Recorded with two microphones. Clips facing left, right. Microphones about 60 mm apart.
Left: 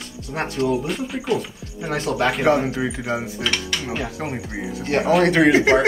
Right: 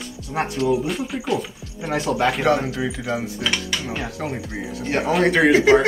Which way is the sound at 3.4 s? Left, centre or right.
Centre.